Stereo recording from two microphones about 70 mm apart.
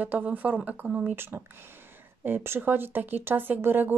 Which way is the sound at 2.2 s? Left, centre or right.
Right.